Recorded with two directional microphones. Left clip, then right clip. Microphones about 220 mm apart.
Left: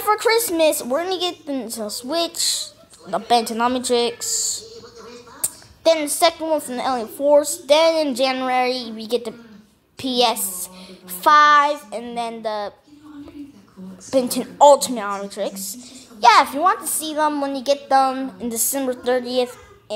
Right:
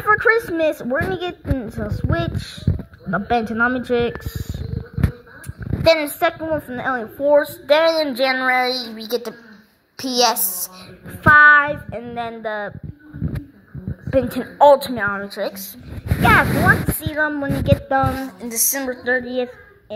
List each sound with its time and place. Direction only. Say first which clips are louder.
0.1 s a woman's voice: right 2 dB; 10° left (ahead or behind)
5.9 s a woman's voice: right 1 dB; 5° left (ahead or behind)
9.9 s a child's voice: right 1 dB; 5° right (ahead or behind)
11.2 s a woman's voice: right 2 dB; 5° left (ahead or behind)
14.1 s a woman's voice: right 1 dB; 5° left (ahead or behind)
18.7 s speech: even; 20° left (ahead or behind)